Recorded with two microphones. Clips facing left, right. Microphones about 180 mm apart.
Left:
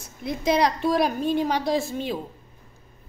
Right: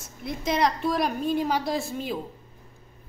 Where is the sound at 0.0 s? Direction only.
Centre (ahead or behind).